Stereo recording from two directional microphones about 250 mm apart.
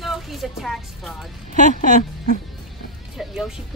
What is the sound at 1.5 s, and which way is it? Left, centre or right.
Speech, left.